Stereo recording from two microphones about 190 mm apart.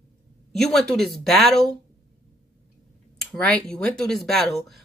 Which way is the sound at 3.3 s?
5° left (ahead or behind).